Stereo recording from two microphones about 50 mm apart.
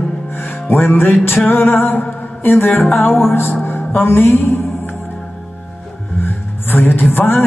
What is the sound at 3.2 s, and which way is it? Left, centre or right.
Music, left.